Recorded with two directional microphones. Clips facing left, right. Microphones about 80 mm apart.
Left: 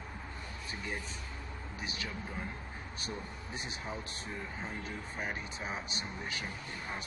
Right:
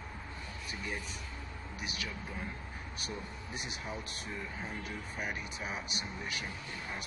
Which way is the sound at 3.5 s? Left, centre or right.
Left.